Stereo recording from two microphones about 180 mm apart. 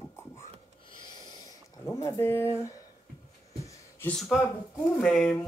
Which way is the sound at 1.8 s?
15° left (ahead or behind).